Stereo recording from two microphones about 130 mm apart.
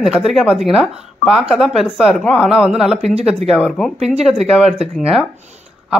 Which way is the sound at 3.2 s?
55° right (ahead or behind).